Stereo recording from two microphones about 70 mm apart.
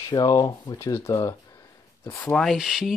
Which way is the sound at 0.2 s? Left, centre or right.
Left.